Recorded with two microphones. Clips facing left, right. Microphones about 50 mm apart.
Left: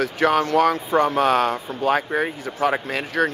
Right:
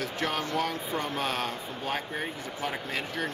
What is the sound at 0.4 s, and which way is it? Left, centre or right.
Speech, left.